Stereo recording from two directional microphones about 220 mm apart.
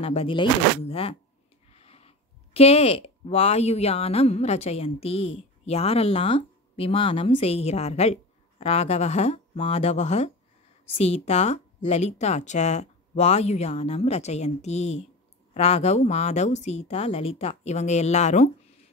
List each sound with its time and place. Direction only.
0.0 s a woman's voice: 25° left (ahead or behind)